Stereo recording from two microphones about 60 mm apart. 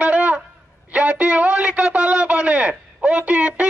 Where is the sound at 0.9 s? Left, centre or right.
Right.